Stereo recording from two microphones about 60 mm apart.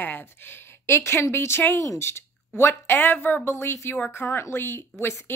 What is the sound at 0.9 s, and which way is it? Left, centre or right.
Speech, left.